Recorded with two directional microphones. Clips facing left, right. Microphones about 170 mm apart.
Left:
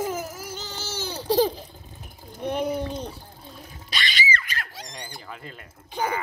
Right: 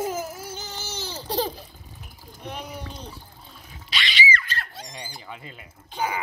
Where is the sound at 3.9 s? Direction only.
45° left (ahead or behind).